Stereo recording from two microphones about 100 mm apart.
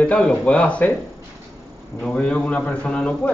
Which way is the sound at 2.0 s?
10° left (ahead or behind).